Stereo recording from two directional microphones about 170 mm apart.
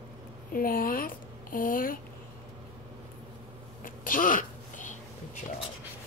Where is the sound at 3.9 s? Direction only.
55° left (ahead or behind).